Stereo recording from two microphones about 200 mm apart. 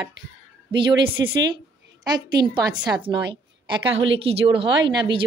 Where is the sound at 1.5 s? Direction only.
20° right (ahead or behind).